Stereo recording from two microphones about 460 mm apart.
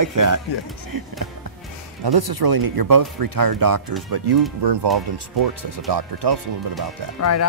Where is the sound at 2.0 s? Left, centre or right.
Right.